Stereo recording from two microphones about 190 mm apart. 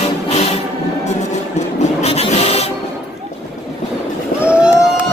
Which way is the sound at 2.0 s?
35° left (ahead or behind).